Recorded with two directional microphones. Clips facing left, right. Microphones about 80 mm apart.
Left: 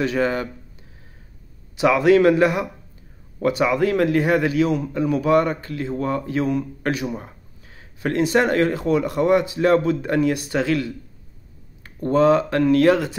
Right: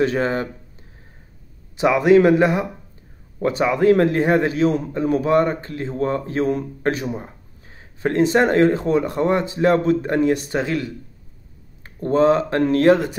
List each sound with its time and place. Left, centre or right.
0.0 s speech: right
1.8 s a man's voice: right